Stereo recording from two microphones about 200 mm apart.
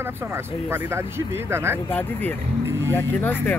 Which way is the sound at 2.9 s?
10° left (ahead or behind).